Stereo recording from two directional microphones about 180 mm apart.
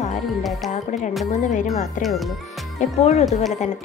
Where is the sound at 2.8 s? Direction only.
40° left (ahead or behind).